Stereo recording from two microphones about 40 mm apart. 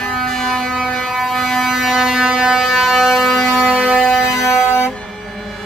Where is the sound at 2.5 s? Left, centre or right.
Centre.